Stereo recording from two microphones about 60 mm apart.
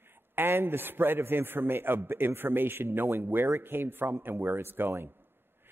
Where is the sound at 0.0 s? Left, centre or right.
Right.